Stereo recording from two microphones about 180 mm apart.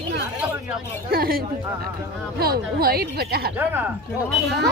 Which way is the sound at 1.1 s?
55° right (ahead or behind).